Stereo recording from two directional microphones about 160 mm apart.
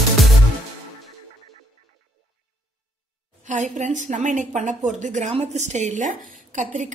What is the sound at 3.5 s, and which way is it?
A woman's voice, 50° right (ahead or behind).